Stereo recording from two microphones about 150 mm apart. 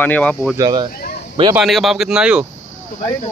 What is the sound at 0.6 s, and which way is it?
Speech, 25° right (ahead or behind).